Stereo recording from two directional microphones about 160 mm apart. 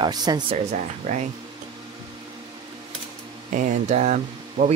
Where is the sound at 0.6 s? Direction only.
50° right (ahead or behind).